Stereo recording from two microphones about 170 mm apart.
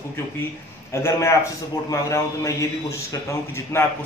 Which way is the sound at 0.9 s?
15° left (ahead or behind).